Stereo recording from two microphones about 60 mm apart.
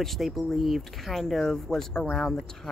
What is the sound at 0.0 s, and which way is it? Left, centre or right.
Speech, centre.